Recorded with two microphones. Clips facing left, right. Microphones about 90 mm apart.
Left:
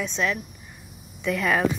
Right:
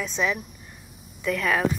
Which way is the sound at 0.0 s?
5° right (ahead or behind).